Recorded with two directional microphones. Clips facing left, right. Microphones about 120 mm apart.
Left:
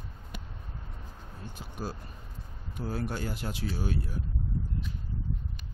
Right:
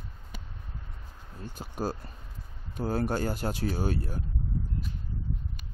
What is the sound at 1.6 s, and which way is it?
Speech, 40° right (ahead or behind).